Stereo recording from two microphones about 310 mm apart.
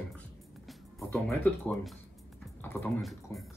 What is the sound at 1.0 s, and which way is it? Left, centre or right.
Speech, centre.